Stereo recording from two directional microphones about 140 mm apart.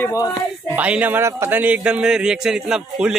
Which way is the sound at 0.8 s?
10° right (ahead or behind).